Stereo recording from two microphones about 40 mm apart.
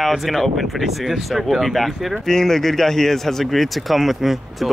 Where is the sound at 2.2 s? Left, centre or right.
Centre.